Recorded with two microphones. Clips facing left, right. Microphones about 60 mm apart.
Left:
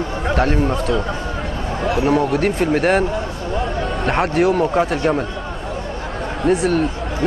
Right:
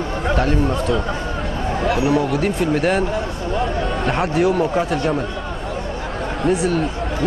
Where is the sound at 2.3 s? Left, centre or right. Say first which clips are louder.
Left 2 dB; left.